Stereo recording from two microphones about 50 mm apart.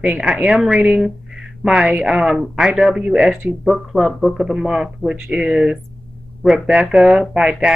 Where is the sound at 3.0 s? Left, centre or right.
Centre.